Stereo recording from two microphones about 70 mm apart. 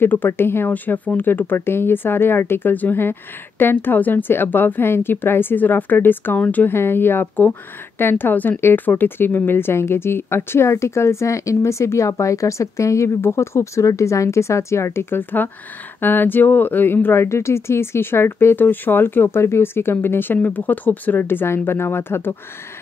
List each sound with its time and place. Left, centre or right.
0.0 s speech: left
6.7 s a woman's voice: left